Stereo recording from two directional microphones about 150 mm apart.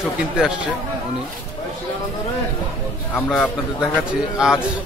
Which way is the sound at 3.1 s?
5° left (ahead or behind).